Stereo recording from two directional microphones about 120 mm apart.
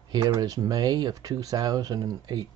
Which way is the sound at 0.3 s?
30° right (ahead or behind).